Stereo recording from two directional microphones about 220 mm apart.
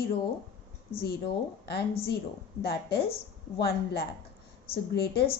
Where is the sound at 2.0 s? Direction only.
45° left (ahead or behind).